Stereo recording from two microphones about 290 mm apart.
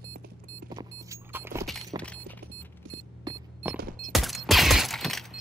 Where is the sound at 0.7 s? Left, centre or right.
Centre.